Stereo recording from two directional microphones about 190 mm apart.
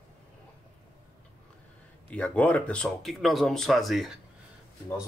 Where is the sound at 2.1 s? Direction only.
5° left (ahead or behind).